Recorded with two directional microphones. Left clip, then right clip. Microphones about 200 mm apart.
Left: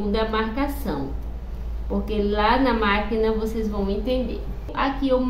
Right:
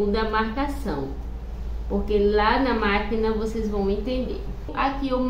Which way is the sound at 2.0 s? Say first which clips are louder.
Right 1 dB; 10° left (ahead or behind).